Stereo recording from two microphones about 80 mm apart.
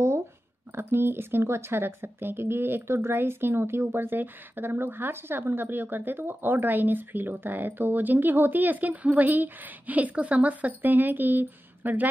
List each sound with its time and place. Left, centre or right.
0.7 s speech: right